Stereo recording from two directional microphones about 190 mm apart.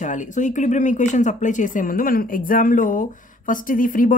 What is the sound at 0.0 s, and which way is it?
Speech, 40° left (ahead or behind).